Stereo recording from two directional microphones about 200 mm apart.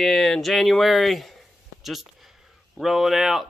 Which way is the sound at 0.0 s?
Centre (ahead or behind).